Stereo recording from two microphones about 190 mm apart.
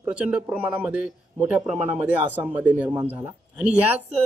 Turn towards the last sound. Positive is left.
turn(degrees=-10)  # may be behind; listen again after turning